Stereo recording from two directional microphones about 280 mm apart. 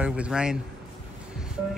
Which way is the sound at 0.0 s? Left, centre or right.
Centre.